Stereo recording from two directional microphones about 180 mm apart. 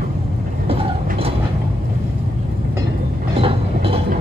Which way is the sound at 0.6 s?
30° right (ahead or behind).